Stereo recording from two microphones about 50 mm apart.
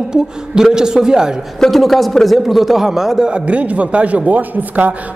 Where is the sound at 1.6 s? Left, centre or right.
Centre; by 4.9 s right.